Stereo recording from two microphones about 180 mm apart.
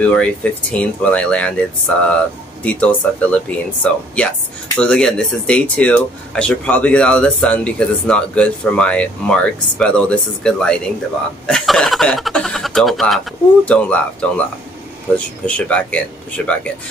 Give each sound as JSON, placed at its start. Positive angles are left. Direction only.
{"t": 0.0, "sound": "speech", "side_deg": 5}